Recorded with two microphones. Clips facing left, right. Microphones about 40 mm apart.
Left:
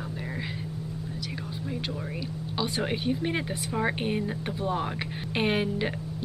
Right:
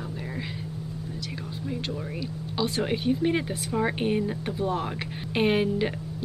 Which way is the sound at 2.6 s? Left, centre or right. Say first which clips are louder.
Right 3 dB; centre.